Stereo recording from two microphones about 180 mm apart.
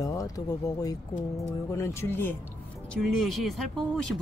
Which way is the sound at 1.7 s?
15° left (ahead or behind).